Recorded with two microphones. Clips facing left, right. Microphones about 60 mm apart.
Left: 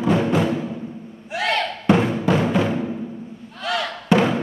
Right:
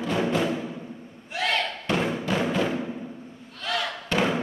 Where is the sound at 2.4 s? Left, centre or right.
Centre.